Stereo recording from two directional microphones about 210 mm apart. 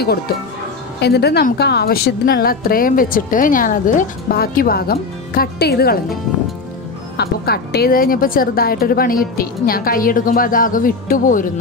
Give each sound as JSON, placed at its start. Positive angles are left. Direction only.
{"t": 1.0, "sound": "a woman's voice", "side_deg": 50}
{"t": 7.2, "sound": "a woman's voice", "side_deg": 50}